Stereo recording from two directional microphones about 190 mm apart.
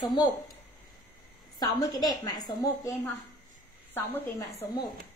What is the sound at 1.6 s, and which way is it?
A woman's voice, 20° left (ahead or behind).